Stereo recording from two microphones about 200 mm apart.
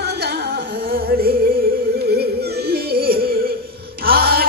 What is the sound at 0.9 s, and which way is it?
Music, 45° right (ahead or behind).